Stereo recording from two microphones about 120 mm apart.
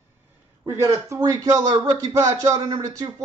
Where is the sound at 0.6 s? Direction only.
25° right (ahead or behind).